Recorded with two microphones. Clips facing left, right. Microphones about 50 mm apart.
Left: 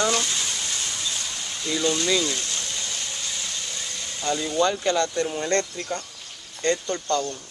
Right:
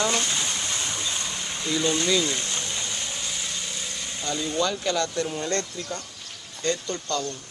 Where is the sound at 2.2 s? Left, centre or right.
Centre.